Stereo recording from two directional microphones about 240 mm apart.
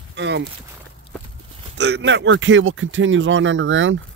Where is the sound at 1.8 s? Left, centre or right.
Right.